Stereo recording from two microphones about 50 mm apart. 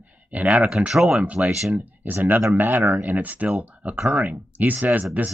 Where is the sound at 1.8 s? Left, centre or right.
Right.